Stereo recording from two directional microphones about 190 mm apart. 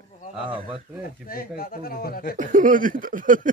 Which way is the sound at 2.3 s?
45° right (ahead or behind).